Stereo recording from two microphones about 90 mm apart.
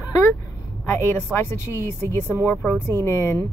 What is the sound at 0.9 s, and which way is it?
Speech, 30° left (ahead or behind).